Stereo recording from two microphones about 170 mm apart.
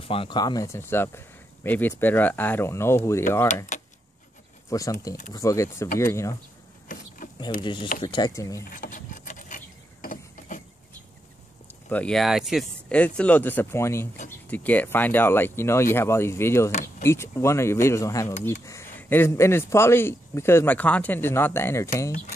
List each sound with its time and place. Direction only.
0.0 s speech: 30° left (ahead or behind); by 3.0 s 15° left (ahead or behind)
3.7 s a sound: 45° left (ahead or behind)
4.6 s speech: 20° left (ahead or behind)
6.9 s vehicle: 50° left (ahead or behind)
7.6 s speech: 25° left (ahead or behind)
8.6 s a sound: 50° left (ahead or behind)
11.9 s speech: 5° left (ahead or behind)